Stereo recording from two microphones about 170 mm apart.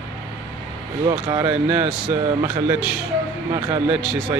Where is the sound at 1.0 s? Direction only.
30° right (ahead or behind).